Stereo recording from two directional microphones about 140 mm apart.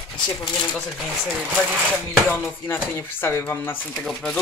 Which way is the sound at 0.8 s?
Centre (ahead or behind).